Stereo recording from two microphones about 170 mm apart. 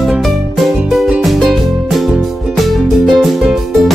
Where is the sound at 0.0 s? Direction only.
Centre (ahead or behind).